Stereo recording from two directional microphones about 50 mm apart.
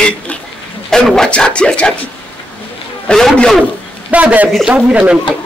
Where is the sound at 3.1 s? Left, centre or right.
Centre.